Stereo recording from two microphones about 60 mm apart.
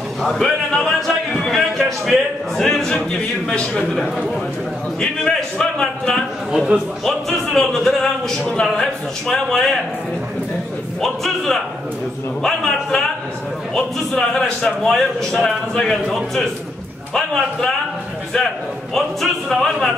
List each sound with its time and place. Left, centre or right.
0.2 s a man's voice: centre
5.0 s a man's voice: centre
6.5 s a man's voice: centre
7.5 s a man's voice: centre
11.0 s a man's voice: centre
14.8 s a man's voice: centre
18.9 s speech: centre